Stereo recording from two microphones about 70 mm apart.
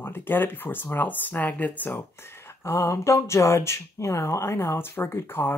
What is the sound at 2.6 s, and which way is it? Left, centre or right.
Speech, left.